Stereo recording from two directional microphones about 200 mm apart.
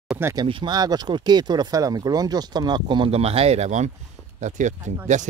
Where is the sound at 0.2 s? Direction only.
15° right (ahead or behind).